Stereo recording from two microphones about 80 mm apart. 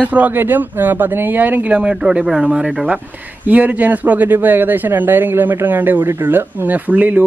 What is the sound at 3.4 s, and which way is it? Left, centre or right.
Speech, centre.